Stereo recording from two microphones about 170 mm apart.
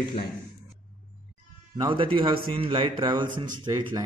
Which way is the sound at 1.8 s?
30° right (ahead or behind).